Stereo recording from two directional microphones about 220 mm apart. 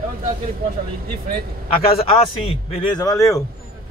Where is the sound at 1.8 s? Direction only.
25° left (ahead or behind).